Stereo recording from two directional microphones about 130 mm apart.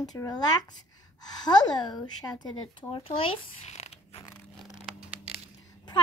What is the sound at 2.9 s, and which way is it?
Shuffling cards, 45° left (ahead or behind).